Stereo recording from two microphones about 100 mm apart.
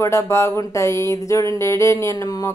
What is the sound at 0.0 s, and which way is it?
A woman's voice, 30° left (ahead or behind).